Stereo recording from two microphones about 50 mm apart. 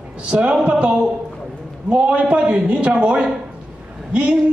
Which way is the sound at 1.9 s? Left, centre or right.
Right.